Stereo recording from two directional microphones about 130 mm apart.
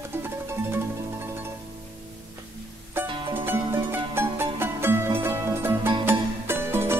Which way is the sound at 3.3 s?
20° right (ahead or behind).